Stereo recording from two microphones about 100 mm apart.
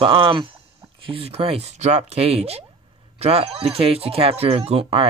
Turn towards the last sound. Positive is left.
turn(degrees=-65)  # may be behind; listen again after turning